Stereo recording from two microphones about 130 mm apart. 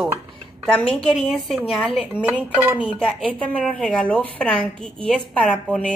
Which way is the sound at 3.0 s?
5° left (ahead or behind).